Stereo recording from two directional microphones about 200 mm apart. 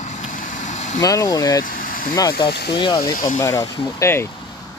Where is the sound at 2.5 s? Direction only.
55° left (ahead or behind).